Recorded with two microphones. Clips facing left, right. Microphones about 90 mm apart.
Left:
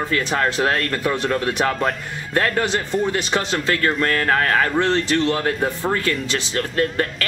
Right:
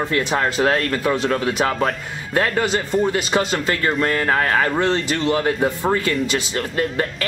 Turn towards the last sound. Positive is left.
turn(degrees=-10)  # may be behind; listen again after turning